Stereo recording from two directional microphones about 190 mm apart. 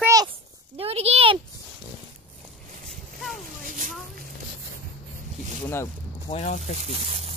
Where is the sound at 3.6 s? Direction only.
45° right (ahead or behind).